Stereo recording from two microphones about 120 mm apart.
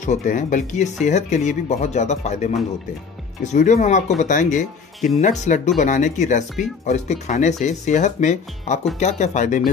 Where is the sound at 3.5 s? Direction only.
80° left.